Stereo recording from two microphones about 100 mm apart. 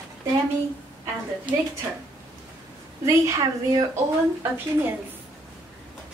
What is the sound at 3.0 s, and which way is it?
Speech, 35° right (ahead or behind).